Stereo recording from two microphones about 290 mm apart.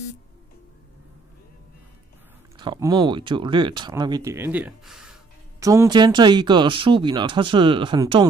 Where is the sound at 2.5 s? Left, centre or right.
Centre.